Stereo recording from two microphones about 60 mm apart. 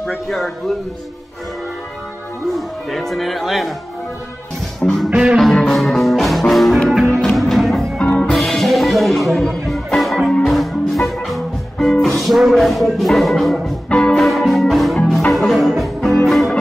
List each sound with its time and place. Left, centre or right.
0.0 s speech: centre
2.5 s speech: centre
4.7 s music: centre
5.1 s music: centre
5.4 s music: centre
8.0 s music: centre
8.3 s music: centre
13.8 s music: centre
14.1 s music: centre